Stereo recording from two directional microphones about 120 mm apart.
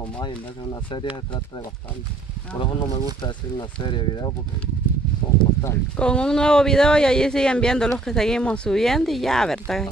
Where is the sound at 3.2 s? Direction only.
40° left (ahead or behind).